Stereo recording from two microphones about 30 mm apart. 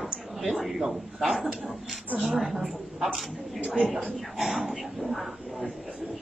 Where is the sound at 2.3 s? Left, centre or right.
Centre.